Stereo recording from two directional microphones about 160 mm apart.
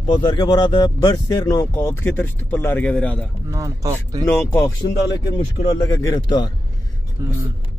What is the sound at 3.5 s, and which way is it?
Speech, 20° right (ahead or behind).